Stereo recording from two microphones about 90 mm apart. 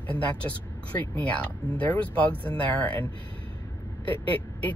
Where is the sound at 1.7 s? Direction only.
15° left (ahead or behind).